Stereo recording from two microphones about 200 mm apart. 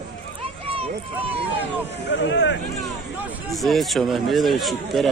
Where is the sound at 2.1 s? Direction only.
65° left (ahead or behind).